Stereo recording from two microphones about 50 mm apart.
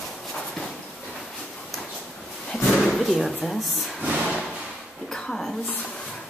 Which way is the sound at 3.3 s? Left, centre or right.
Centre.